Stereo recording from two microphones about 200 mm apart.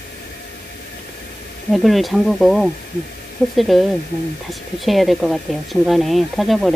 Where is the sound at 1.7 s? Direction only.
Centre (ahead or behind).